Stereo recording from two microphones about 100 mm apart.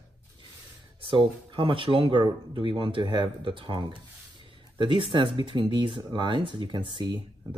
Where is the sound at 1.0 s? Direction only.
55° right (ahead or behind).